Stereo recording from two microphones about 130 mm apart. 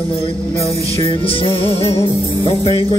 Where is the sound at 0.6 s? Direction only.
50° left (ahead or behind).